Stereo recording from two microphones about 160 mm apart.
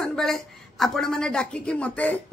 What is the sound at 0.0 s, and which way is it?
Speech, 5° left (ahead or behind).